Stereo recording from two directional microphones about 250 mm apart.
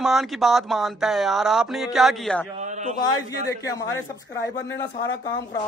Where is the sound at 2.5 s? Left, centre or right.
Right.